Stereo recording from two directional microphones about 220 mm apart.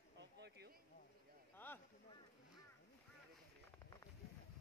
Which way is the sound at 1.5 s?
10° left (ahead or behind).